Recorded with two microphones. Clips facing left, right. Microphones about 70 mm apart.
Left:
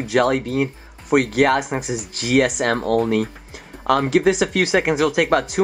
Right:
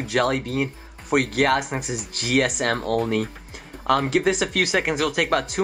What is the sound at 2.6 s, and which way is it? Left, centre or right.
Speech, left.